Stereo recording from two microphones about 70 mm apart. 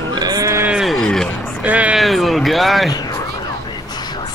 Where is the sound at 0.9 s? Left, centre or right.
Centre.